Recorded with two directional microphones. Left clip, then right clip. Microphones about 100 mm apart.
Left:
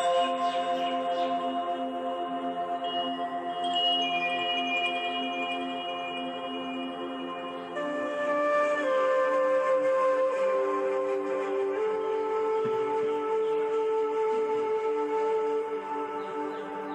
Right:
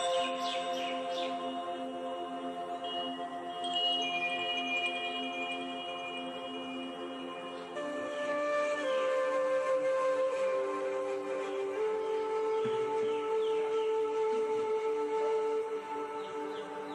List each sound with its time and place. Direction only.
0.0 s music: 30° left (ahead or behind)
3.6 s music: 35° left (ahead or behind)
8.3 s music: 40° left (ahead or behind)